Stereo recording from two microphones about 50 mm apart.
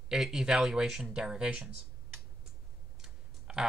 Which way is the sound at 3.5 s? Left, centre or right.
Centre.